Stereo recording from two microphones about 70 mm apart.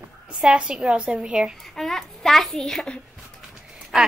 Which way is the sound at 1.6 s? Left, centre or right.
Centre.